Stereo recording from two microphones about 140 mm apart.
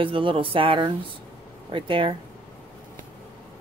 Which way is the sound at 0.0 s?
40° right (ahead or behind).